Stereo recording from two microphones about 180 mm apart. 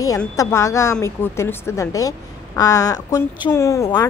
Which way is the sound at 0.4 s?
15° left (ahead or behind).